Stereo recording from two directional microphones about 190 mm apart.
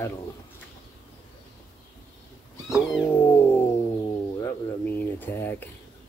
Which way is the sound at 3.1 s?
10° left (ahead or behind).